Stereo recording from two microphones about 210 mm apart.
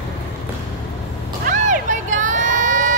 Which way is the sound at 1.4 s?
35° right (ahead or behind).